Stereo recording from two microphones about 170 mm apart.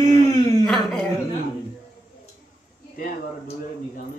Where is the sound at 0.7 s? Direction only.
Centre (ahead or behind).